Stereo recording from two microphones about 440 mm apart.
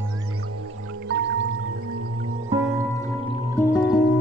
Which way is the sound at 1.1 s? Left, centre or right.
Right.